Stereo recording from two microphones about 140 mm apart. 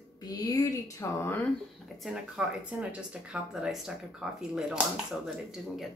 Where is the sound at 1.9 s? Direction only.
5° right (ahead or behind).